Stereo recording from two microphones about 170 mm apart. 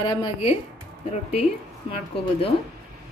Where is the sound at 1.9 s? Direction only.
35° left (ahead or behind).